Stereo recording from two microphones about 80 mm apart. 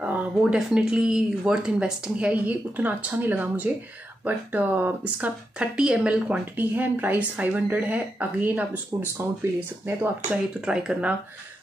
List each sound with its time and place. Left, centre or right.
0.0 s a sound: centre
0.4 s speech: centre; by 9.9 s right
10.3 s speech: centre